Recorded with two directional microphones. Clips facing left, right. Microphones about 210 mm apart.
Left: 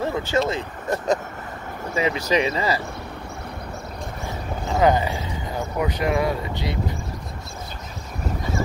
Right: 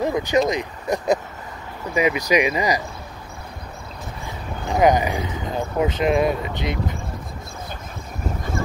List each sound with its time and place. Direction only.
0.0 s a sound: 15° right (ahead or behind)
0.5 s speech: 15° right (ahead or behind)
4.6 s speech: 15° right (ahead or behind)